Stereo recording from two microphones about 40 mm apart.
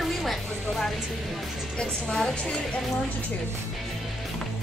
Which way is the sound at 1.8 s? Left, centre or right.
Left.